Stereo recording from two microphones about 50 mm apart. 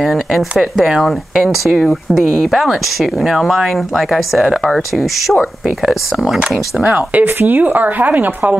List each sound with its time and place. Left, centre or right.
0.0 s speech: centre
6.8 s a woman's voice: right